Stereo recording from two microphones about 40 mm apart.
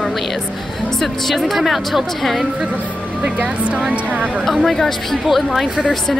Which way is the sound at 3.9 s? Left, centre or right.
Right.